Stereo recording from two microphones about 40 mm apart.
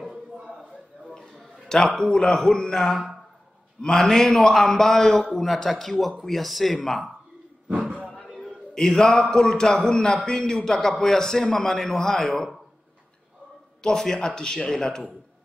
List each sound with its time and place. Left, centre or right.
1.1 s a sound: centre
2.1 s a man's voice: centre
4.6 s a man's voice: centre
8.2 s a sound: centre
9.3 s a man's voice: centre
13.8 s a man's voice: centre